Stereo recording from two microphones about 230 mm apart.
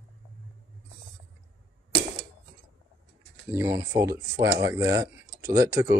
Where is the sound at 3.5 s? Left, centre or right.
Centre.